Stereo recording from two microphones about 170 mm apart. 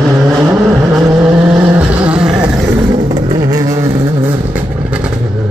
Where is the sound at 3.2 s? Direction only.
25° right (ahead or behind).